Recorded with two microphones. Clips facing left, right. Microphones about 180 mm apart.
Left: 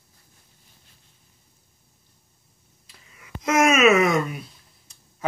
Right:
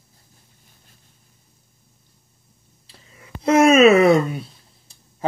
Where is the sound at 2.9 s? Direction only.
30° right (ahead or behind).